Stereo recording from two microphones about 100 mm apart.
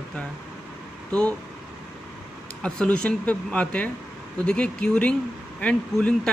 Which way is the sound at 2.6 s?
10° left (ahead or behind).